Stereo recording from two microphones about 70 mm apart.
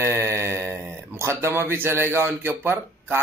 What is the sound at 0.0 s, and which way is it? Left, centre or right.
Speech, right.